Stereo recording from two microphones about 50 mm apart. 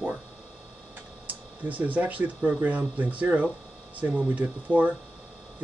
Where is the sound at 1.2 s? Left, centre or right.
Right.